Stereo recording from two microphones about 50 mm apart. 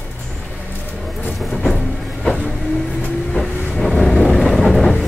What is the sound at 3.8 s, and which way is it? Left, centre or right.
Vehicle, centre.